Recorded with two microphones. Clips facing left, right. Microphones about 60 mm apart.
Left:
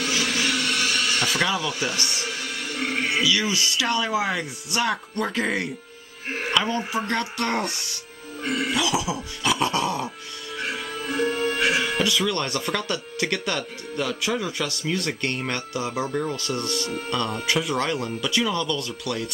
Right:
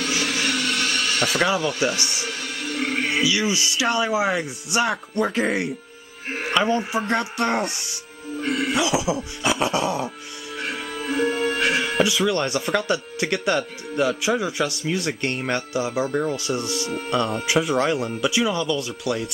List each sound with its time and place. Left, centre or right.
0.2 s a sound: centre
1.7 s speech: centre
2.0 s music: centre
3.3 s speech: centre
5.3 s speech: centre
6.3 s music: centre
6.8 s speech: centre
8.4 s music: centre
8.9 s cough: centre
9.7 s dog: centre
10.6 s music: centre
12.2 s speech: centre
16.3 s speech: centre
18.0 s speech: centre